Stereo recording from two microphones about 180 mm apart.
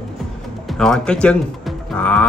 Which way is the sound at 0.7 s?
5° left (ahead or behind).